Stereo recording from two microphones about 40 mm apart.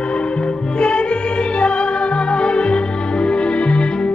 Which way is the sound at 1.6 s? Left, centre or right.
Left.